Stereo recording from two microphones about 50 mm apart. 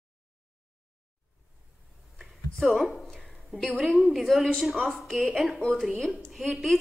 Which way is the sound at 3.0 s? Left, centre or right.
Centre.